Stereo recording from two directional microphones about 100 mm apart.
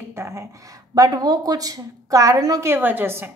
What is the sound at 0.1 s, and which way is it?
A woman's voice, 25° right (ahead or behind).